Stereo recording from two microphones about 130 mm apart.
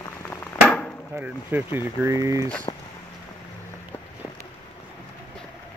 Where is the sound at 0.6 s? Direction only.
5° left (ahead or behind).